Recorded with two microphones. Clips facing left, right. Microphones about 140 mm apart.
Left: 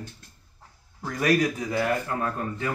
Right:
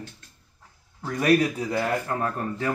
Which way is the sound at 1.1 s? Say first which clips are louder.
Right 2 dB; 30° right (ahead or behind).